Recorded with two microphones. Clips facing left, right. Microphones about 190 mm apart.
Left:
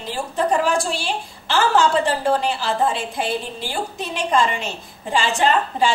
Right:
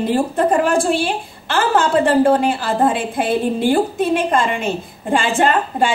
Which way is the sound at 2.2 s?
55° right (ahead or behind).